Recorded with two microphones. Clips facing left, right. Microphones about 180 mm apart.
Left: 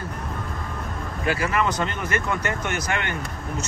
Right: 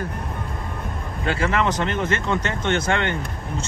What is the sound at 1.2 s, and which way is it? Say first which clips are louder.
Speech: right 2 dB; 25° right (ahead or behind).